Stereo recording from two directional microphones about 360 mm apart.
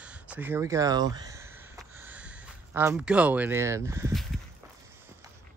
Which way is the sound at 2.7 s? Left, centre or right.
Centre.